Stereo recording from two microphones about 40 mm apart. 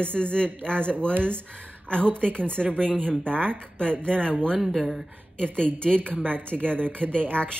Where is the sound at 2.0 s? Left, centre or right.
Left.